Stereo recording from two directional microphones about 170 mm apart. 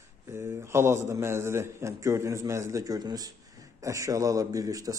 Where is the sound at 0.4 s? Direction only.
15° right (ahead or behind).